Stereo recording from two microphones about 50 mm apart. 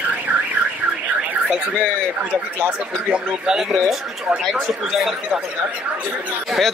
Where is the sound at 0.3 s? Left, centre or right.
Right.